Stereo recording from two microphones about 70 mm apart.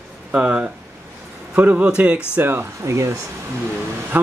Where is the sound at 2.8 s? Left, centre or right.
Right.